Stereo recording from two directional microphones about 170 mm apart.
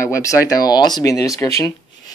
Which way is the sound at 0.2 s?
20° left (ahead or behind).